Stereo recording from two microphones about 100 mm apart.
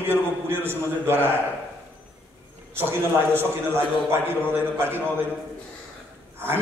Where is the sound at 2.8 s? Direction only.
25° right (ahead or behind).